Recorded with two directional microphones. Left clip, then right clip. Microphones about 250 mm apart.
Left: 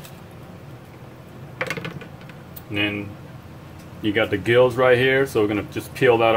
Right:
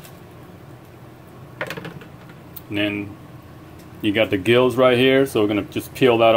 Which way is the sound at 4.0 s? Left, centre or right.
Right.